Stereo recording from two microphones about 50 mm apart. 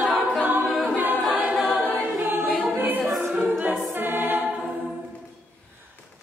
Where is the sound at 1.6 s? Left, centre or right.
Right.